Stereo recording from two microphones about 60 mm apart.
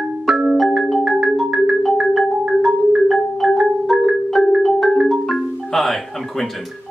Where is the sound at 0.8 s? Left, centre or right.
Centre.